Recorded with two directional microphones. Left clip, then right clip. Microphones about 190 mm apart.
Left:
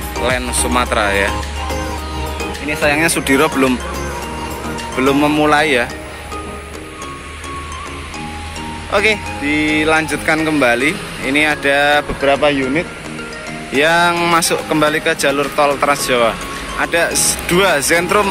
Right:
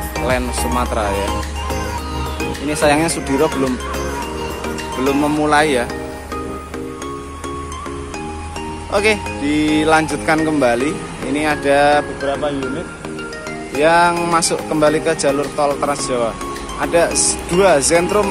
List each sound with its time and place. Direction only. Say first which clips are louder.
0.2 s speech: left 2 dB; 5° right (ahead or behind)
2.7 s speech: right 1 dB; 25° right (ahead or behind)
3.0 s speech: left 3 dB; centre (ahead or behind)
4.9 s speech: left 4 dB; centre (ahead or behind)
8.9 s speech: left 2 dB; 10° right (ahead or behind)
9.5 s speech: even; 20° right (ahead or behind); by 12.0 s centre (ahead or behind)
13.7 s speech: even; centre (ahead or behind)